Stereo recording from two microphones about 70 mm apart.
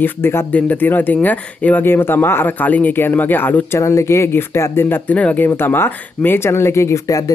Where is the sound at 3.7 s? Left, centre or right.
Left.